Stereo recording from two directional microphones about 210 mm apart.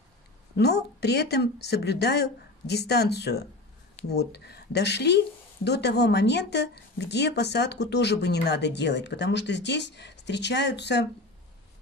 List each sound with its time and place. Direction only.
0.6 s speech: 50° left (ahead or behind)